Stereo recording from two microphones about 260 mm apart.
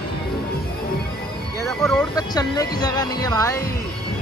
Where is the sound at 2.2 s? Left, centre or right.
Centre.